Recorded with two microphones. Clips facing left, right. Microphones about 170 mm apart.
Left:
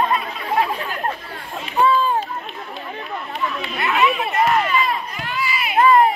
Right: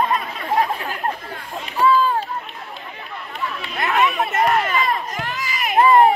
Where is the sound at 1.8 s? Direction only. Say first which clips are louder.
Even; 25° left (ahead or behind).